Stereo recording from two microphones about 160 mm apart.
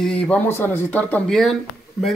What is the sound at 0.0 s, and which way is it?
Speech, 5° left (ahead or behind).